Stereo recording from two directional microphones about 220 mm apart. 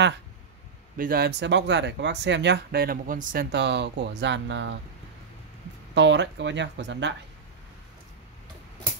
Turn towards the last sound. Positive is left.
turn(degrees=-55)  # may be behind; listen again after turning